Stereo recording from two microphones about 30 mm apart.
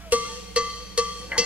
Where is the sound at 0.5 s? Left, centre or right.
Right.